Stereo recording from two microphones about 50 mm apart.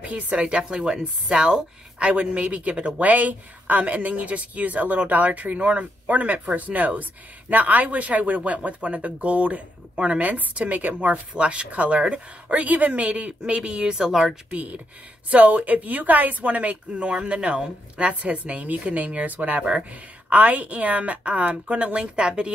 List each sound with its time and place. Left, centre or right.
0.3 s a woman's voice: centre
2.0 s a woman's voice: right
14.5 s speech: right